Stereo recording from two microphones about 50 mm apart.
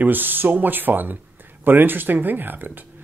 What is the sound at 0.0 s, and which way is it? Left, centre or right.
Speech, right.